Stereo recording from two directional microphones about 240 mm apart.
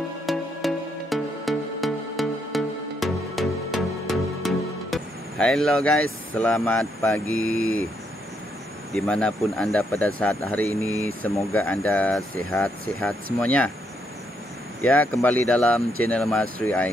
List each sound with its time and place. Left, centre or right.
0.3 s music: centre
6.3 s speech: centre
7.3 s speech: left
8.9 s speech: centre
15.0 s speech: centre